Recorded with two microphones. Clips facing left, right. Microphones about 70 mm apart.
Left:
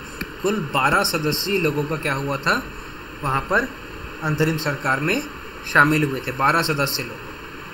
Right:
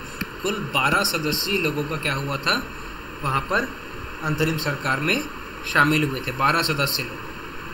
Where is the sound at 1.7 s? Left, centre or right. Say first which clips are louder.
Left 3 dB; left.